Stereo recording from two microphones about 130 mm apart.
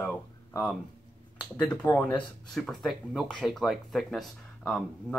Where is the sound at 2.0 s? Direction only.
30° left (ahead or behind).